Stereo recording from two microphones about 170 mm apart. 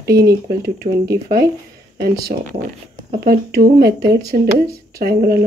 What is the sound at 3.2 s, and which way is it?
Speech, 60° right (ahead or behind).